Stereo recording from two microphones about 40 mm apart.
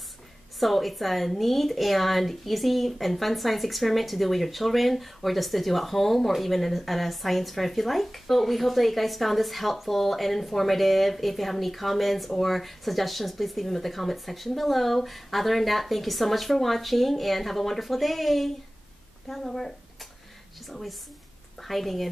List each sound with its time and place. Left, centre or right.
0.6 s a woman's voice: centre